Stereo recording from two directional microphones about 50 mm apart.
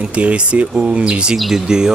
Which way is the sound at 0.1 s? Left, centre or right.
Right.